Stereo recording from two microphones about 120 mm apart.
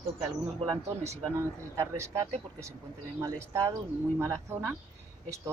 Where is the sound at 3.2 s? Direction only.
25° right (ahead or behind).